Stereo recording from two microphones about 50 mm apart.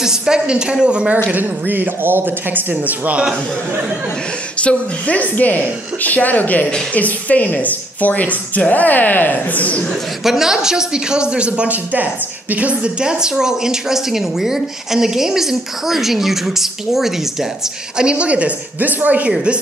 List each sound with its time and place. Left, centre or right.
0.0 s speech: centre
1.3 s speech: right
2.7 s speech: right
4.6 s a woman's voice: left
10.2 s speech: centre; by 12.9 s right
13.0 s speech: centre
17.9 s speech: right